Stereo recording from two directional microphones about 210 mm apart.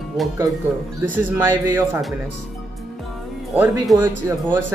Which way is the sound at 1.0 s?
10° right (ahead or behind).